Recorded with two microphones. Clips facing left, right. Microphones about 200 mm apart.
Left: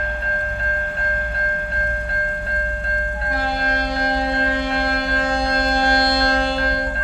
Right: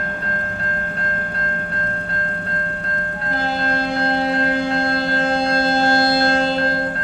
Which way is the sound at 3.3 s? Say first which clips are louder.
Right 2 dB; 30° right (ahead or behind).